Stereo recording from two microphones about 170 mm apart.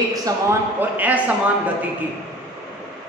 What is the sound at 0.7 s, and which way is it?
Speech, 10° right (ahead or behind).